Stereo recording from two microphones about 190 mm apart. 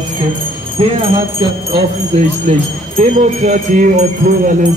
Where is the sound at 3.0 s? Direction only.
40° right (ahead or behind).